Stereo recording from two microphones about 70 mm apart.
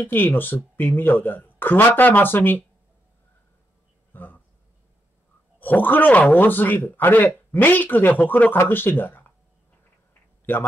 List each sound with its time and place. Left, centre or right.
0.0 s speech: left
4.1 s a sound: left
5.6 s speech: left
10.5 s speech: left